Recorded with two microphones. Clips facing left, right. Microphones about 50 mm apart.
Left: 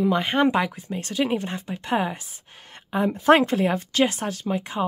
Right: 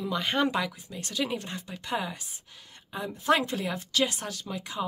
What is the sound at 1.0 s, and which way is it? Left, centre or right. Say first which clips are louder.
Speech: left 7 dB; left.